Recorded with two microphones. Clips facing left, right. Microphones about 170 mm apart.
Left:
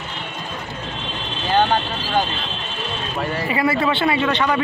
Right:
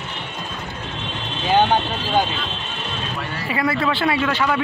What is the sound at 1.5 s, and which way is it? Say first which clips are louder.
Speech: right 1 dB; 15° right (ahead or behind).